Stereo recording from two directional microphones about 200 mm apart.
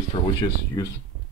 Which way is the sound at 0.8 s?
15° left (ahead or behind).